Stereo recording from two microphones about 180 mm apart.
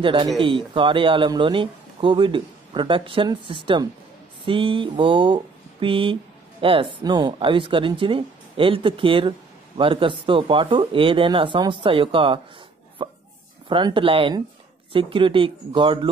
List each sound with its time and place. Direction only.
0.0 s speech: 30° right (ahead or behind)
13.7 s speech: 25° right (ahead or behind)